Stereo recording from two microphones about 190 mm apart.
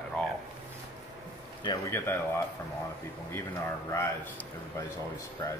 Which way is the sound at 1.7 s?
15° left (ahead or behind).